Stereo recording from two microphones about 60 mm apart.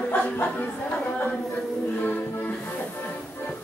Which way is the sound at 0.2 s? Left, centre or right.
Left.